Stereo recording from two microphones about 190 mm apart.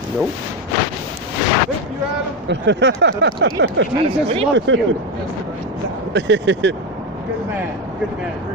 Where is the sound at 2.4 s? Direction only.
70° right (ahead or behind).